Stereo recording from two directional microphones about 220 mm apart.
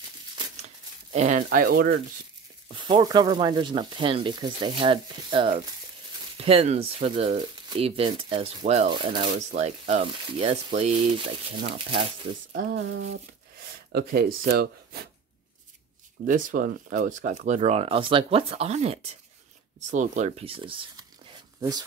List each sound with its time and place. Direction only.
1.1 s speech: 35° right (ahead or behind)
2.7 s speech: 20° right (ahead or behind)
12.5 s a sound: 55° right (ahead or behind)
13.9 s speech: 45° right (ahead or behind)
16.3 s speech: 35° right (ahead or behind); by 21.8 s 20° right (ahead or behind)